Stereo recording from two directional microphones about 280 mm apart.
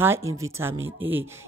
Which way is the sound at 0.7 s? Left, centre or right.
Right.